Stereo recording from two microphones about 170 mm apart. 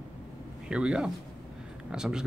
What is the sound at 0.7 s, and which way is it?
Speech, 5° right (ahead or behind).